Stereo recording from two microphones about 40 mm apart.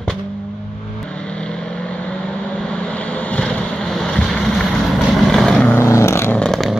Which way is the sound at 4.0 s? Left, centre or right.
Centre.